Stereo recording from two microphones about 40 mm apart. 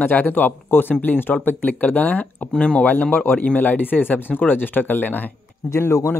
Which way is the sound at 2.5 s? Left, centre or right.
Left.